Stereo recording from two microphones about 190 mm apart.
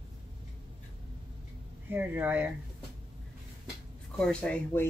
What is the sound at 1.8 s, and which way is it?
Speech, 10° right (ahead or behind).